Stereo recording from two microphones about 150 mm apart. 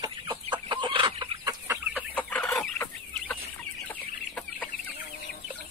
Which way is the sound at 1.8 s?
10° right (ahead or behind).